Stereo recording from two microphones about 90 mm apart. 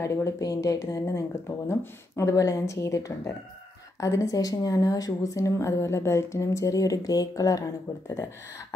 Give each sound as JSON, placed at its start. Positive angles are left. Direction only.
{"t": 0.0, "sound": "a woman's voice", "side_deg": 30}
{"t": 0.4, "sound": "a woman's voice", "side_deg": 40}